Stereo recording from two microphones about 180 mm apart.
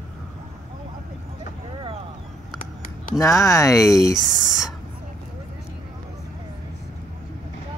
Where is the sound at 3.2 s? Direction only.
15° left (ahead or behind).